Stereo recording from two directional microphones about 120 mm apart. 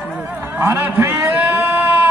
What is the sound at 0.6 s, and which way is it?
Speech, 15° right (ahead or behind).